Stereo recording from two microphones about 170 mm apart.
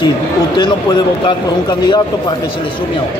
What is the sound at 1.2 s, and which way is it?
Speech, 25° left (ahead or behind).